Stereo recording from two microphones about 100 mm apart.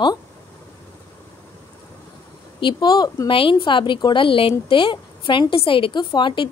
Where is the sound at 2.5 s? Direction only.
50° left (ahead or behind).